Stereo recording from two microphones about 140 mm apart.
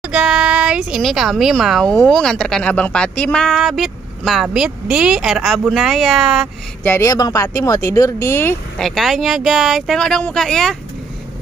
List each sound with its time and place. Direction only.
0.1 s speech: 5° right (ahead or behind)
6.8 s speech: 20° left (ahead or behind)
8.7 s speech: centre (ahead or behind)